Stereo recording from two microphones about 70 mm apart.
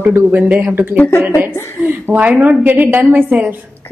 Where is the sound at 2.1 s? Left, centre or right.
Right.